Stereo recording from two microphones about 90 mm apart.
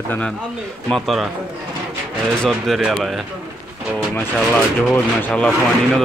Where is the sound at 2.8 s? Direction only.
5° right (ahead or behind).